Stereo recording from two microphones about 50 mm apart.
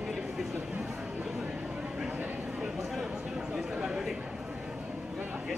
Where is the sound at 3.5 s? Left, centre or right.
Centre.